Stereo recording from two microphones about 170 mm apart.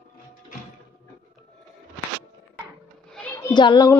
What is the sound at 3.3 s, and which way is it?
Speech, 25° left (ahead or behind).